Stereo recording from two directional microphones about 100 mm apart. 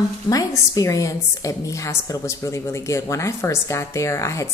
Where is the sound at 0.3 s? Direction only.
35° left (ahead or behind).